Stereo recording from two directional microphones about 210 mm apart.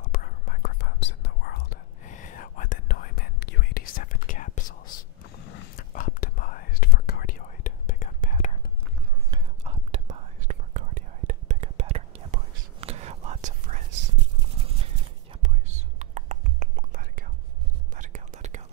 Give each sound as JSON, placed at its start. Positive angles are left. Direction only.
{"t": 0.1, "sound": "whispering", "side_deg": 40}
{"t": 9.3, "sound": "whispering", "side_deg": -25}
{"t": 15.4, "sound": "whispering", "side_deg": -35}